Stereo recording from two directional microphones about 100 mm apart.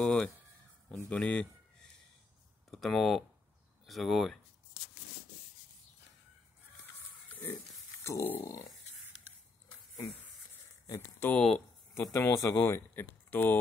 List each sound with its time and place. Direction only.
0.0 s speech: 10° left (ahead or behind)
7.2 s pig: 15° left (ahead or behind)
8.0 s speech: 25° left (ahead or behind)
8.9 s pig: 90° left
11.3 s speech: 5° left (ahead or behind)
12.1 s speech: 25° left (ahead or behind)